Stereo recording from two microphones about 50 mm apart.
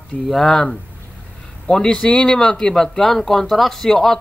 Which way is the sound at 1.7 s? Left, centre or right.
Centre.